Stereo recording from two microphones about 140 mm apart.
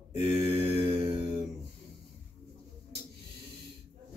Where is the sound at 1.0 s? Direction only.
25° right (ahead or behind).